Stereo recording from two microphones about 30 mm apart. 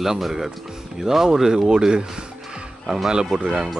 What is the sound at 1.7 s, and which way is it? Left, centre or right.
Speech, right.